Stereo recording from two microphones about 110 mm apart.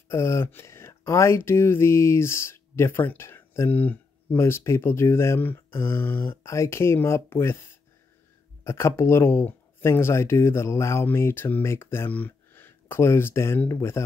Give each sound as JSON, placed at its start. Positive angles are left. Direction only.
{"t": 0.1, "sound": "speech", "side_deg": 25}
{"t": 8.6, "sound": "speech", "side_deg": 25}